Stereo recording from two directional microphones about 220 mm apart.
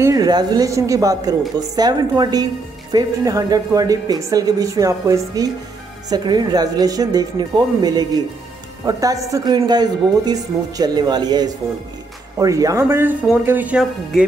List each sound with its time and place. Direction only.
0.0 s speech: 15° right (ahead or behind)